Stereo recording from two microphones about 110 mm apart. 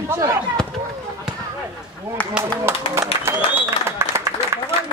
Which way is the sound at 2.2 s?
15° left (ahead or behind).